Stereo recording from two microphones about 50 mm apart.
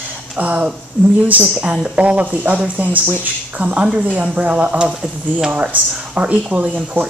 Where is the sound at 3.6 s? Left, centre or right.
Centre.